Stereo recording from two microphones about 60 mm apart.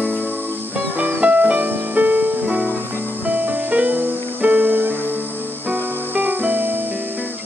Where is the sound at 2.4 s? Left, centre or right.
Centre.